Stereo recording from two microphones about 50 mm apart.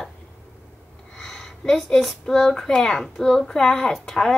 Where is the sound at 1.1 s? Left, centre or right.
Centre.